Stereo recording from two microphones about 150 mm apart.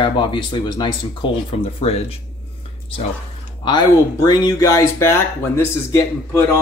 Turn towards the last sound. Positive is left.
turn(degrees=15)  # may be behind; listen again after turning